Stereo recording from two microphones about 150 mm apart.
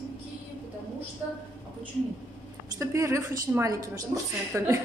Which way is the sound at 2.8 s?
20° right (ahead or behind).